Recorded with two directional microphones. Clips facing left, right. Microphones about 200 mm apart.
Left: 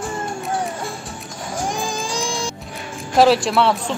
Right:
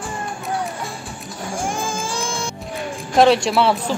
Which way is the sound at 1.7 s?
15° left (ahead or behind).